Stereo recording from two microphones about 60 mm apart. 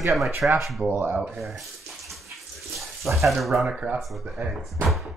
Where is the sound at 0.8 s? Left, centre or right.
Right.